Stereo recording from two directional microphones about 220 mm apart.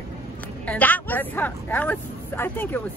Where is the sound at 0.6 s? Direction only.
5° left (ahead or behind).